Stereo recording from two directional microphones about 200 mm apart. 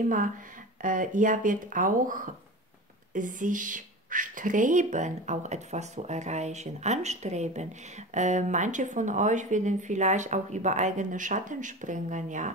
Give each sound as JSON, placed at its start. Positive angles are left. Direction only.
{"t": 0.8, "sound": "speech", "side_deg": -40}